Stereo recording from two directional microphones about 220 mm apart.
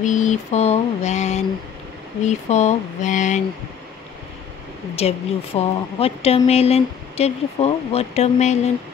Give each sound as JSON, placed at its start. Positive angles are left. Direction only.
{"t": 0.0, "sound": "mantra", "side_deg": 35}
{"t": 4.9, "sound": "speech", "side_deg": 25}